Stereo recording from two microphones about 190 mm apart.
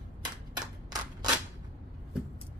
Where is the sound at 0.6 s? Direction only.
20° right (ahead or behind).